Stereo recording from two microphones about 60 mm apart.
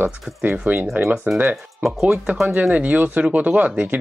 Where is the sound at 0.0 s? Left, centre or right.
Right.